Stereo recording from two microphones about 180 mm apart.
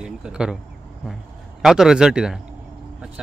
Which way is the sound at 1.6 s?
5° right (ahead or behind).